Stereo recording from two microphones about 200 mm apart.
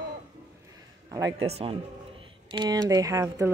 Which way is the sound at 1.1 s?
20° right (ahead or behind).